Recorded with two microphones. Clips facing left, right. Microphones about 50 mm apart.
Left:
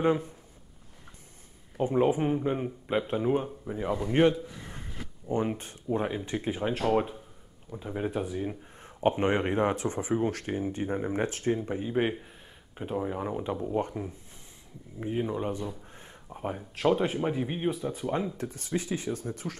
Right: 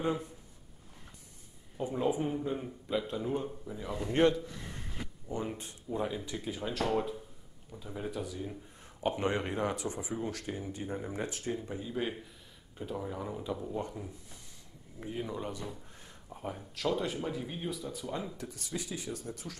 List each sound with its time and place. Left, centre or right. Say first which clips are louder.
0.0 s speech: left 7 dB; left
1.8 s speech: left 7 dB; left
4.0 s speech: left 3 dB; left
5.3 s speech: left 8 dB; left